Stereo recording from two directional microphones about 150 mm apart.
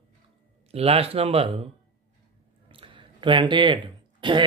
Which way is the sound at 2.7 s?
35° right (ahead or behind).